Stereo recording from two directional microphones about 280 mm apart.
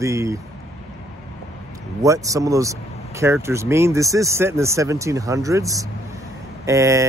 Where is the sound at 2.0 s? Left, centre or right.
Centre.